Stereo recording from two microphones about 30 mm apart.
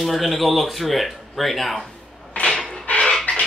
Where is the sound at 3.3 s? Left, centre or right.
Left.